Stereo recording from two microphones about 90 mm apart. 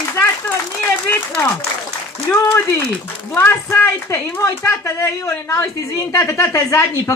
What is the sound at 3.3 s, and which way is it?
A woman's voice, 25° left (ahead or behind).